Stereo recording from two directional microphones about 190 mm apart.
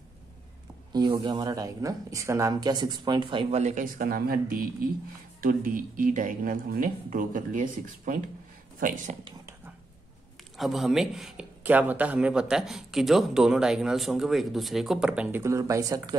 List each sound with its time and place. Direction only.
0.9 s speech: 20° right (ahead or behind); by 9.1 s 45° right (ahead or behind)
10.6 s a man's voice: centre (ahead or behind); by 16.2 s 20° right (ahead or behind)